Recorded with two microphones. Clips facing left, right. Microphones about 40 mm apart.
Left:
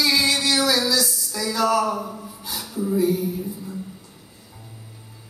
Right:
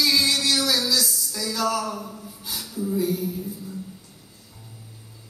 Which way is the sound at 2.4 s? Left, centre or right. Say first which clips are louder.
Left 2 dB; centre.